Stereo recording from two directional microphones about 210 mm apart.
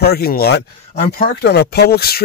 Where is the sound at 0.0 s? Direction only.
50° left (ahead or behind).